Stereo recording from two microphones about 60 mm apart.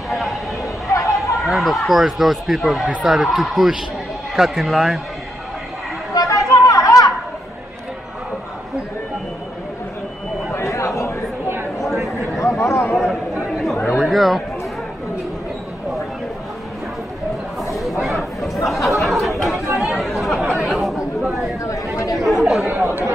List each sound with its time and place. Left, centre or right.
0.8 s chatter: left
1.3 s speech: centre
6.1 s chatter: left
10.5 s a sound: left
12.4 s a sound: left
12.9 s a sound: centre
13.9 s chatter: centre
18.0 s chatter: centre
22.7 s chatter: right